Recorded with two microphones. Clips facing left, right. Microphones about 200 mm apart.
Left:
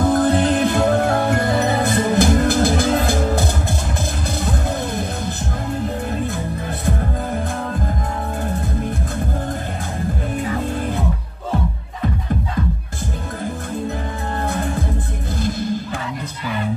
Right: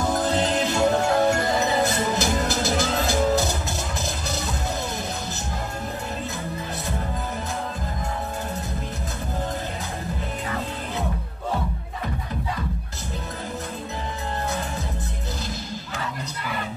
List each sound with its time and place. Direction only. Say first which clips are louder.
0.0 s music: left 7 dB; 55° left (ahead or behind)
14.5 s music: left 6 dB; 55° left (ahead or behind)